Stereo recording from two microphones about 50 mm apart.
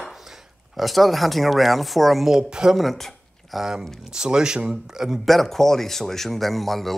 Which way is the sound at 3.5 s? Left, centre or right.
Centre.